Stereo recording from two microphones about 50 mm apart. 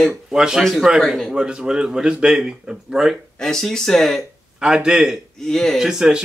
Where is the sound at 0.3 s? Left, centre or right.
Centre.